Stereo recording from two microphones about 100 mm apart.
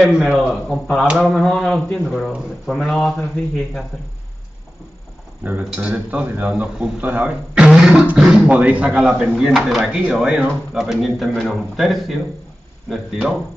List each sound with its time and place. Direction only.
0.0 s speech: 5° right (ahead or behind)
5.4 s speech: 15° right (ahead or behind); by 12.2 s centre (ahead or behind)